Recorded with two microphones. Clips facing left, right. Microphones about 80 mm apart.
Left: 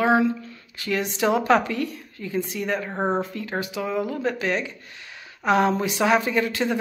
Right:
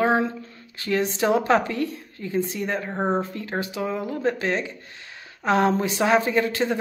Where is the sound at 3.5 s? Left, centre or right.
Right.